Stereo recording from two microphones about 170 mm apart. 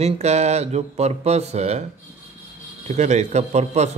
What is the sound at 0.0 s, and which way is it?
Speech, 40° right (ahead or behind).